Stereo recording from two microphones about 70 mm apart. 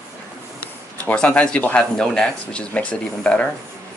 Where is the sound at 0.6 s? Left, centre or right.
Centre.